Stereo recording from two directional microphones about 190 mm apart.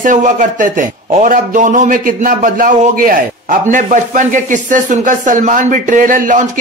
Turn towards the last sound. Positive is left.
turn(degrees=-45)  # may be behind; listen again after turning